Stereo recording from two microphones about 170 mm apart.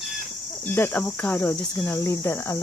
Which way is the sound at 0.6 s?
10° left (ahead or behind).